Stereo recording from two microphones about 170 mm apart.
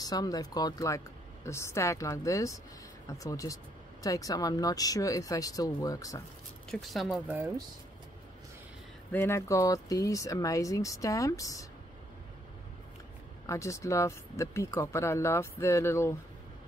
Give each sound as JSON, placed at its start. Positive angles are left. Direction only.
{"t": 0.0, "sound": "speech", "side_deg": 25}
{"t": 6.7, "sound": "speech", "side_deg": 0}
{"t": 7.2, "sound": "speech", "side_deg": -10}
{"t": 9.1, "sound": "speech", "side_deg": 15}
{"t": 13.5, "sound": "speech", "side_deg": 20}